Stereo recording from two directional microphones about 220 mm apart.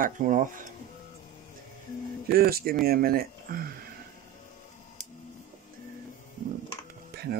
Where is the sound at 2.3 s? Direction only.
45° right (ahead or behind).